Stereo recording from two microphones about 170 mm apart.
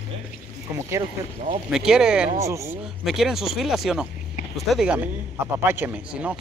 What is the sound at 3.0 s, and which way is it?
A man's voice, centre (ahead or behind).